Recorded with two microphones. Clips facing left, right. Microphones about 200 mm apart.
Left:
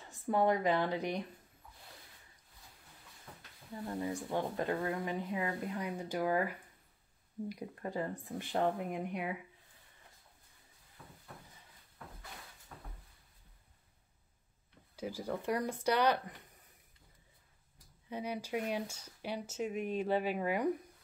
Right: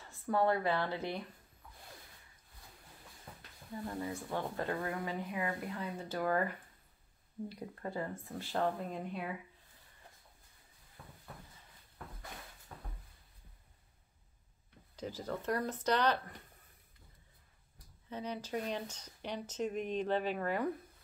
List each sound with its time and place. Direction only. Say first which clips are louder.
0.0 s speech: left 1 dB; 20° left (ahead or behind)
4.1 s speech: left 3 dB; 15° left (ahead or behind)
15.0 s speech: left 2 dB; 10° left (ahead or behind)
18.1 s speech: left 1 dB; 10° left (ahead or behind)